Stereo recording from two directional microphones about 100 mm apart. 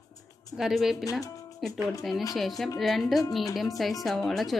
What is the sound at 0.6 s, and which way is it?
Speech, 5° right (ahead or behind).